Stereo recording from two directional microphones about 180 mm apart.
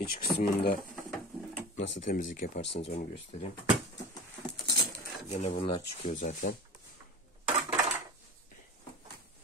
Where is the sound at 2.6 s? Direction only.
75° left (ahead or behind).